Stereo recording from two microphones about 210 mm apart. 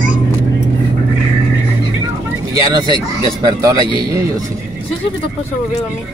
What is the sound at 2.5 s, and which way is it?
A man's voice, 20° right (ahead or behind).